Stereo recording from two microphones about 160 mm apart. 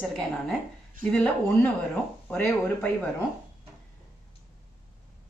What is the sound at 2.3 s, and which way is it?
Speech, 5° left (ahead or behind).